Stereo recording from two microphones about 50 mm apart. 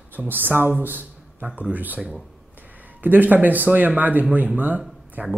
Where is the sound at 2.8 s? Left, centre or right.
Right.